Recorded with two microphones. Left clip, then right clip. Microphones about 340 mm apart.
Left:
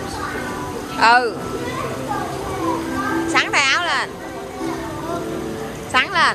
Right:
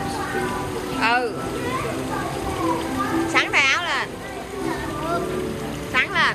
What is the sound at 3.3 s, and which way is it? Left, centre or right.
Music, centre.